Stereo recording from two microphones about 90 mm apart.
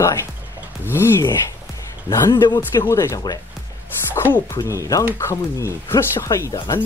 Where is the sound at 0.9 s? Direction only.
25° left (ahead or behind).